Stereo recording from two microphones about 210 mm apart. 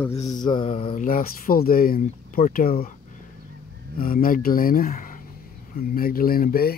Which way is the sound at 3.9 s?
45° left (ahead or behind).